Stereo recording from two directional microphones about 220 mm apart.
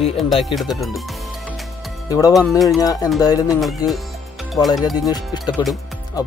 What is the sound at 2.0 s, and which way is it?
Speech, 15° left (ahead or behind).